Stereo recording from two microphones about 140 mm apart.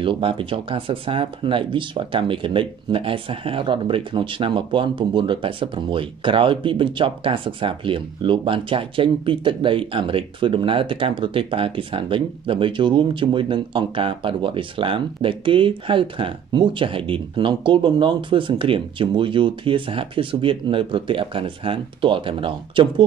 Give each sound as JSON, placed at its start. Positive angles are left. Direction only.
{"t": 0.0, "sound": "speech", "side_deg": -40}